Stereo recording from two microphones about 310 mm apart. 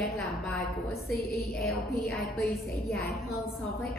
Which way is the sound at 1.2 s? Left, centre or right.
Left.